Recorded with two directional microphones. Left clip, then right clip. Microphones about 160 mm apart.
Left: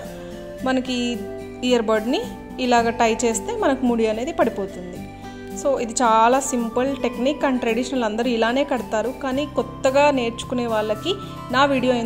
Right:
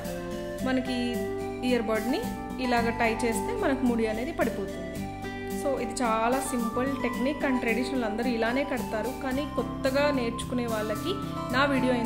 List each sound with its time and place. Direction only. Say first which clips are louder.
0.7 s a woman's voice: left 7 dB; 30° left (ahead or behind)
5.6 s a woman's voice: left 9 dB; 30° left (ahead or behind)